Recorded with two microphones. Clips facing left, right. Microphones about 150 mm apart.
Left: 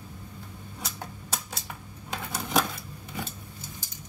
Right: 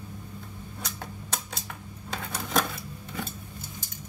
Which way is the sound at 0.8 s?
5° left (ahead or behind).